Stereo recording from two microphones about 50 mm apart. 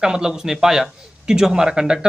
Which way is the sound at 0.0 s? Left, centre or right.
Centre.